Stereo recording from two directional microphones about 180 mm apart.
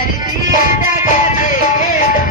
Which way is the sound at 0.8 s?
45° left (ahead or behind).